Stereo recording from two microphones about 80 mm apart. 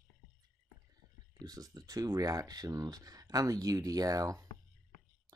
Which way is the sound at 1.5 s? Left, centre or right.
Right.